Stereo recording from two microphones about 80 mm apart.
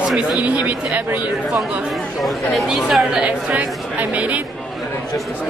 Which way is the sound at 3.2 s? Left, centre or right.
Centre.